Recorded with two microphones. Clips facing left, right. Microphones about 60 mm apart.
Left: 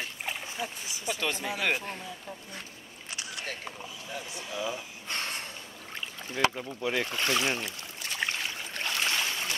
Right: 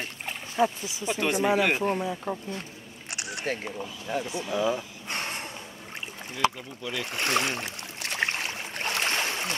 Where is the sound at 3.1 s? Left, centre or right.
Right.